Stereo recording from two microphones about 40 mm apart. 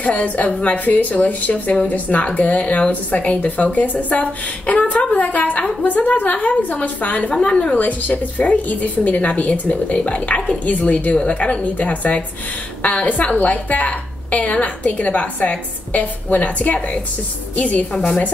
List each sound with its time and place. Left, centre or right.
0.0 s a woman's voice: left
7.2 s a woman's voice: left
11.1 s a woman's voice: left